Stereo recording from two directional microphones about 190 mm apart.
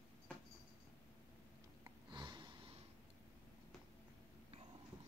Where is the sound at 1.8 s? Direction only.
25° right (ahead or behind).